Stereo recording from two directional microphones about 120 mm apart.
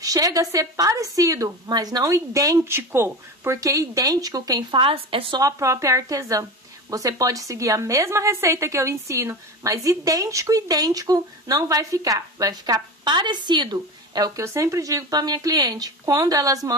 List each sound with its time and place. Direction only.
0.0 s a woman's voice: 30° right (ahead or behind); by 5.4 s 50° right (ahead or behind)
5.4 s a woman's voice: 25° right (ahead or behind)